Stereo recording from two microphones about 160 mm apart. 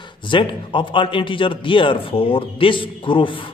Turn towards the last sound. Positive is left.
turn(degrees=30)  # may be behind; listen again after turning